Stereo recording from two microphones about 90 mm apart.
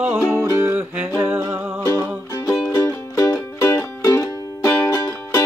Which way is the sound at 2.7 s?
35° left (ahead or behind).